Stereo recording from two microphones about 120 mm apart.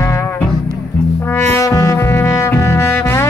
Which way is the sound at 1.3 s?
20° left (ahead or behind).